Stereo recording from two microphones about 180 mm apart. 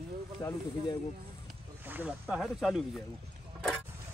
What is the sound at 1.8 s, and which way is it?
Snake, 10° right (ahead or behind).